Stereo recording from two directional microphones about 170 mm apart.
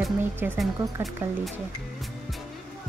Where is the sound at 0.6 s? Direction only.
Centre (ahead or behind).